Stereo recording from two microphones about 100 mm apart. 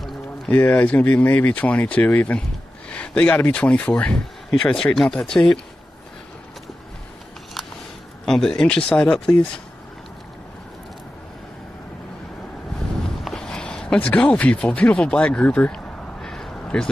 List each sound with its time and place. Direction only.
0.5 s speech: 20° left (ahead or behind)
8.3 s speech: 5° left (ahead or behind)
13.2 s a sound: 5° left (ahead or behind)